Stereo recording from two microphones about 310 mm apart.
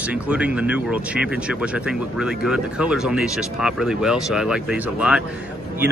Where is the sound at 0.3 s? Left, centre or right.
Centre.